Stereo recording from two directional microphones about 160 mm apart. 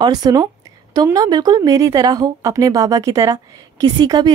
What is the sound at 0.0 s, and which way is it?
Speech, 25° right (ahead or behind).